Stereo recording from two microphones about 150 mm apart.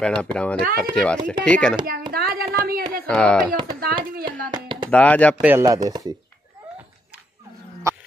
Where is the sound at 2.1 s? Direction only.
90° right.